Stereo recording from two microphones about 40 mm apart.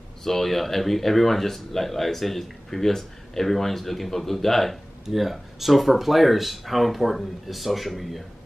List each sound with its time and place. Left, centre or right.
0.2 s speech: centre